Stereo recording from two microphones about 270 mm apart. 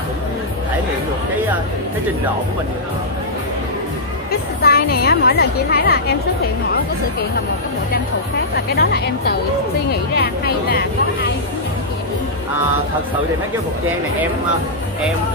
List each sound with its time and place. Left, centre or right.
4.3 s speech: left
8.5 s speech: left